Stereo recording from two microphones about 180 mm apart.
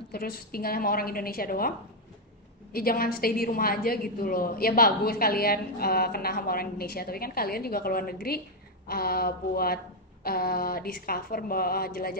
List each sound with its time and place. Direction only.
0.1 s a woman's voice: 55° left (ahead or behind)
2.7 s a woman's voice: 55° left (ahead or behind)